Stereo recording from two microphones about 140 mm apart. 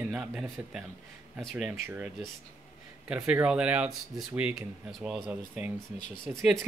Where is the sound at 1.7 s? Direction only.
15° right (ahead or behind).